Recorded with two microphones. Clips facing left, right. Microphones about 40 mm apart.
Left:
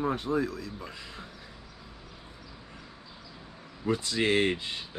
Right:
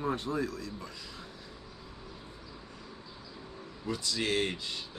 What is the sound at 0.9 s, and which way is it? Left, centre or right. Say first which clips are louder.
Speech: left 3 dB; left.